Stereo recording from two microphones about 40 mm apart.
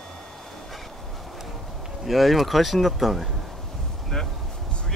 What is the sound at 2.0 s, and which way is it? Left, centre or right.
Speech, centre.